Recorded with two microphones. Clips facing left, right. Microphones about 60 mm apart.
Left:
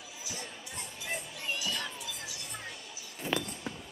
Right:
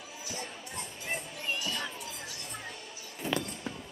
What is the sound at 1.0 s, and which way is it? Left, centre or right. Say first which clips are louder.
Music: right 1 dB; right.